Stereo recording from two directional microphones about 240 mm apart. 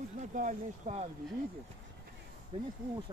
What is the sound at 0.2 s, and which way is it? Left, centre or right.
Speech, right.